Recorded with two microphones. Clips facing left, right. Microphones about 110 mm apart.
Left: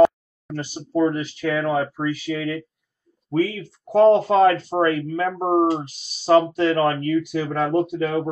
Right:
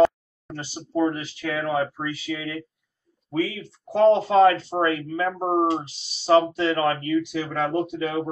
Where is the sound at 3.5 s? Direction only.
45° left (ahead or behind).